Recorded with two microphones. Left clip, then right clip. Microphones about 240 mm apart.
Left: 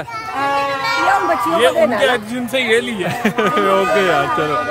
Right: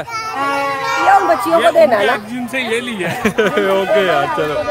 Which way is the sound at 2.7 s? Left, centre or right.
Centre.